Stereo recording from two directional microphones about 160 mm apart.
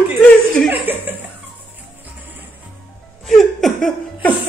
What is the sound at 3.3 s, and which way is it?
Chuckle, centre (ahead or behind).